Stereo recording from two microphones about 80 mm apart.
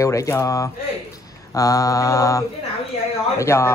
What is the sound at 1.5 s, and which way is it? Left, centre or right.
Mantra, left.